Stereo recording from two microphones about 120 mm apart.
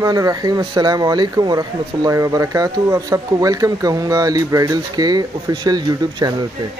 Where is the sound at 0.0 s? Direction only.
30° right (ahead or behind).